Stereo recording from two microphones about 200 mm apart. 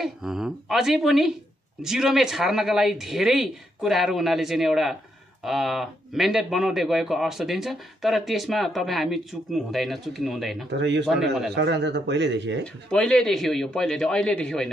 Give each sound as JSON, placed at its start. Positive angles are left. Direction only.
{"t": 0.0, "sound": "speech", "side_deg": 0}
{"t": 10.7, "sound": "speech", "side_deg": -60}
{"t": 12.9, "sound": "speech", "side_deg": 0}